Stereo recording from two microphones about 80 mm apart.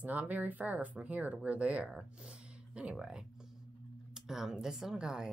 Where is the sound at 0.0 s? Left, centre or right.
Centre.